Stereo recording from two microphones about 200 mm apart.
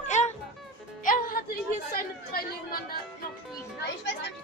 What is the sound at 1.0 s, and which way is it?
Music, 45° left (ahead or behind).